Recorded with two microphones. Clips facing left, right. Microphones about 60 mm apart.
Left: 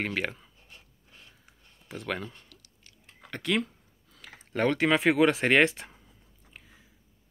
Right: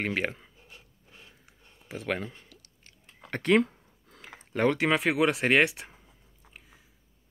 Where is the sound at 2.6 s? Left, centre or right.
Right.